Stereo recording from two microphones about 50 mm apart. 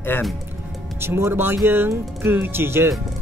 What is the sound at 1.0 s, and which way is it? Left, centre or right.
Speech, right.